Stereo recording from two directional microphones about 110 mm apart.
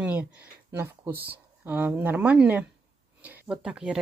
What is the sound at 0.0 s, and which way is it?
Speech, 15° right (ahead or behind).